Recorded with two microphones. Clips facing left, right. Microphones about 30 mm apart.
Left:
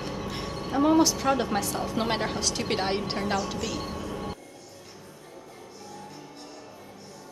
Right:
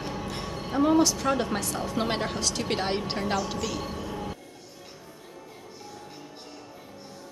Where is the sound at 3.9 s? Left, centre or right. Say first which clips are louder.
Even; centre.